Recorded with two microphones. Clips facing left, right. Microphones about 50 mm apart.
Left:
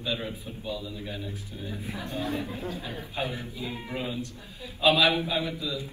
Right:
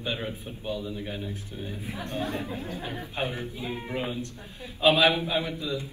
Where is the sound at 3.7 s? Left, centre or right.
Centre.